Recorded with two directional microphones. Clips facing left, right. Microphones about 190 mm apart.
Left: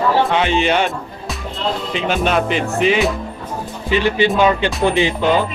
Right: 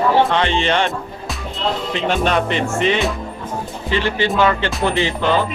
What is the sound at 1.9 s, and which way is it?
Speech, 5° left (ahead or behind).